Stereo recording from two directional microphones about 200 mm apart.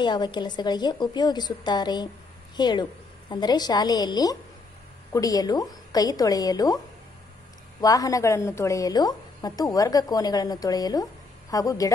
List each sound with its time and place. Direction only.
0.0 s a woman's voice: 20° left (ahead or behind)
7.8 s a woman's voice: 15° left (ahead or behind)